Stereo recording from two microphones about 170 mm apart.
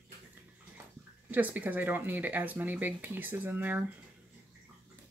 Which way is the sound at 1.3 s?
10° right (ahead or behind).